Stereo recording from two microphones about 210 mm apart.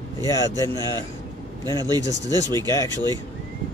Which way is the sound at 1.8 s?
20° right (ahead or behind).